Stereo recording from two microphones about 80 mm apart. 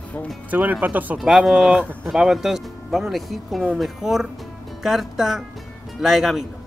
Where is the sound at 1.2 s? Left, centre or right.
Centre.